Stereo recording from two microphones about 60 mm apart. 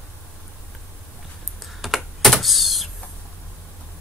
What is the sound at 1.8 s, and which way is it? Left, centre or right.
Computer keyboard, centre.